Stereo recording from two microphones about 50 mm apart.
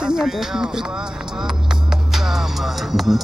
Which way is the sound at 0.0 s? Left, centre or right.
Centre.